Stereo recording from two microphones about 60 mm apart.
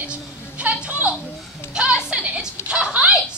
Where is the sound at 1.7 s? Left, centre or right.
Centre.